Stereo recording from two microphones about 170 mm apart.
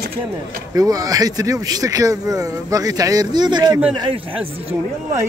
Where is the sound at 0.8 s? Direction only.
20° right (ahead or behind).